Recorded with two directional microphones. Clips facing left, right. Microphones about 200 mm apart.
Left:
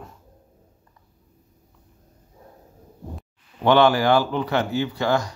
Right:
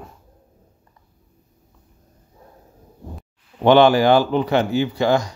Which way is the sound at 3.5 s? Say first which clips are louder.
Right 4 dB; 20° right (ahead or behind).